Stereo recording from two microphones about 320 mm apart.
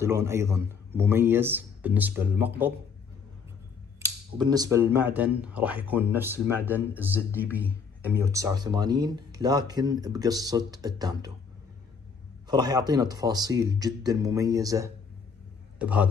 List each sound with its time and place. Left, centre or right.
0.0 s speech: centre
4.0 s speech: centre
12.4 s speech: centre